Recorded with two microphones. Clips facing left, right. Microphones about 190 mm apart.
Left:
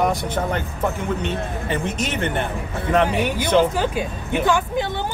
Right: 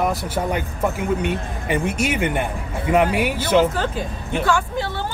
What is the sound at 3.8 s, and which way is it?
Speech, 15° left (ahead or behind).